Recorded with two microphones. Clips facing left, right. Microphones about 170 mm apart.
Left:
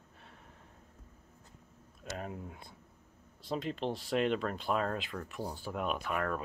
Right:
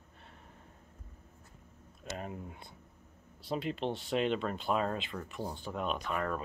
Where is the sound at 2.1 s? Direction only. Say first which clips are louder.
Even; centre (ahead or behind).